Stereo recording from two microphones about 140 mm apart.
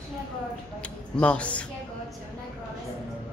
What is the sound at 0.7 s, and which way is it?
Speech, 10° left (ahead or behind).